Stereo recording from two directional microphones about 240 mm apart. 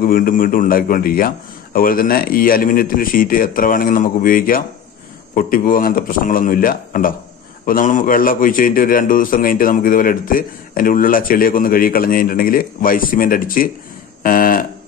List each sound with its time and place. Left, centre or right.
0.0 s a man's voice: left